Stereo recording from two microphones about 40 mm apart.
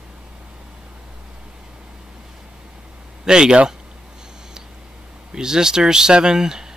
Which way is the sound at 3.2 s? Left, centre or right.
Right.